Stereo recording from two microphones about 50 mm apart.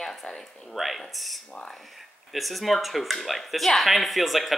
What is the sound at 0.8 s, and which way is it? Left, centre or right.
Speech, centre.